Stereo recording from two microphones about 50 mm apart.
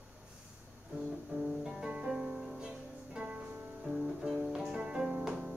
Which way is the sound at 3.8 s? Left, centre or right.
Centre.